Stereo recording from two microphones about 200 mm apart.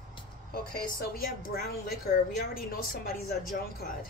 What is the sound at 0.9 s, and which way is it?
A woman's voice, 45° left (ahead or behind).